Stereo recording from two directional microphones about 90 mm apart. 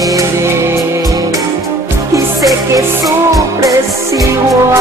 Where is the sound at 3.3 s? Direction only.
40° right (ahead or behind).